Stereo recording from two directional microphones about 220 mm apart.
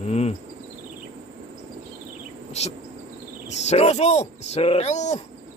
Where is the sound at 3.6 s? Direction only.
30° left (ahead or behind).